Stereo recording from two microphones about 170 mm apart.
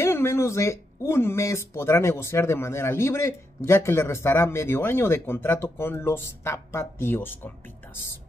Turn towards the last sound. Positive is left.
turn(degrees=10)  # may be behind; listen again after turning